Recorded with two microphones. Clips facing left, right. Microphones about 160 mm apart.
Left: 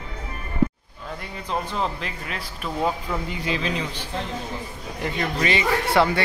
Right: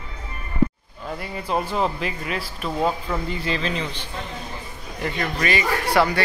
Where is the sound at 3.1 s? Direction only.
10° left (ahead or behind).